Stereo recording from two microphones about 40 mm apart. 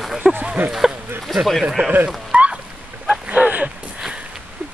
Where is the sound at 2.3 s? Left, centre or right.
Right.